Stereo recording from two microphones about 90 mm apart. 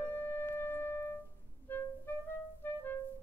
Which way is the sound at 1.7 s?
20° left (ahead or behind).